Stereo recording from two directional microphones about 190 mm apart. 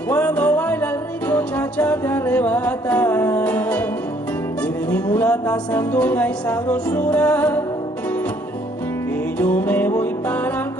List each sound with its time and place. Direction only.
0.1 s music: 10° left (ahead or behind)
4.8 s music: 5° left (ahead or behind)
9.4 s music: 5° left (ahead or behind)